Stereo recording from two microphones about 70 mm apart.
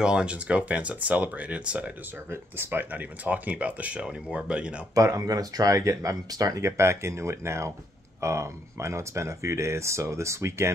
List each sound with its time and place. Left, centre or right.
0.0 s speech: centre
2.2 s speech: right; by 4.8 s centre
4.9 s speech: right
6.6 s speech: right